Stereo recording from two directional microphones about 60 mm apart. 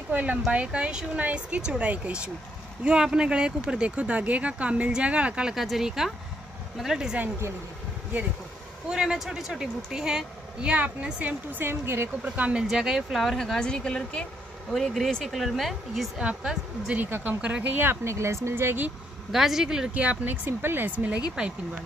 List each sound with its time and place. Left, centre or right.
0.1 s speech: right
5.5 s a man's voice: centre
8.9 s a man's voice: centre; by 12.1 s right
12.4 s speech: right
12.6 s speech: centre
13.6 s a woman's voice: centre
14.7 s speech: centre
16.2 s a man's voice: centre
16.9 s speech: right
18.0 s speech: right
19.3 s a man's voice: centre
19.9 s speech: right